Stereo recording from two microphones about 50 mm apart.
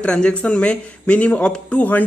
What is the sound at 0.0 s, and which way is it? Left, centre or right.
A man's voice, centre.